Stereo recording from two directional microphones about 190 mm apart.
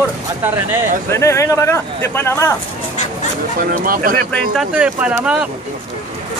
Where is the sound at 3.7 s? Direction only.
50° right (ahead or behind).